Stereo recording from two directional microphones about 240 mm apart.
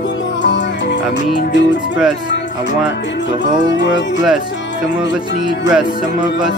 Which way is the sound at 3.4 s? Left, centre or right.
Left.